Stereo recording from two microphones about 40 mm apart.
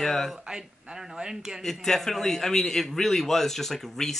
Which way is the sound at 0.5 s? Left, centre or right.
Centre.